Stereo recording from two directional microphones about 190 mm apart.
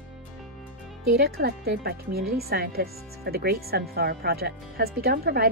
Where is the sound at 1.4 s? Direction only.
55° right (ahead or behind).